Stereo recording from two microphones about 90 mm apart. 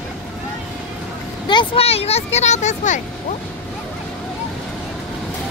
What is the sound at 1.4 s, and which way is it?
Vehicle, 75° left (ahead or behind).